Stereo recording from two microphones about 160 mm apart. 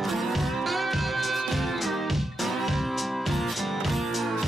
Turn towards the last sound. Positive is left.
turn(degrees=0)  # may be behind; listen again after turning